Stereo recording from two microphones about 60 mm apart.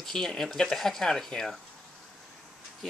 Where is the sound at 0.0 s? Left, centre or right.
Centre.